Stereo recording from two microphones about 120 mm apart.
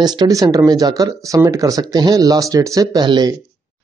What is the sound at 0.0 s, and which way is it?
Speech, 35° right (ahead or behind).